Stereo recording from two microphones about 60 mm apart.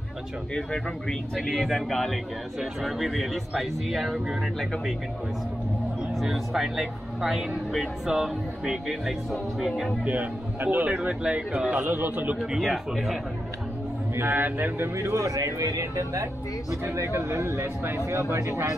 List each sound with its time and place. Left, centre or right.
0.6 s speech: centre
6.1 s speech: centre
10.0 s a man's voice: right
11.0 s speech: centre
11.7 s a man's voice: right
12.6 s speech: centre
14.1 s a man's voice: right
15.0 s speech: right